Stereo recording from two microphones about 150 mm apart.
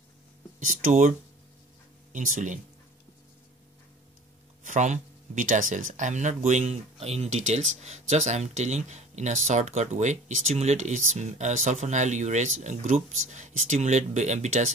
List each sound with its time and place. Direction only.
0.6 s speech: 60° right (ahead or behind)
2.1 s speech: 60° right (ahead or behind)
4.6 s speech: 55° right (ahead or behind)